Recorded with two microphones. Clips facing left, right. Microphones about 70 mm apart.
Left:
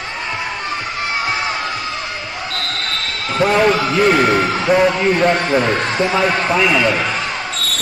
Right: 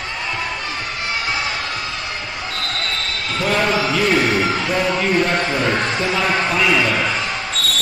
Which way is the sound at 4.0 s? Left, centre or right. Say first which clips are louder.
Left 5 dB; left.